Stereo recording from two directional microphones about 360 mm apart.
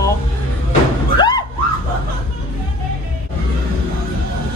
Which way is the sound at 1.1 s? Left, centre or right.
Centre.